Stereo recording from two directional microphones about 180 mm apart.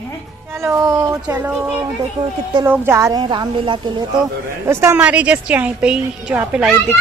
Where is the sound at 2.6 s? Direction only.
15° right (ahead or behind).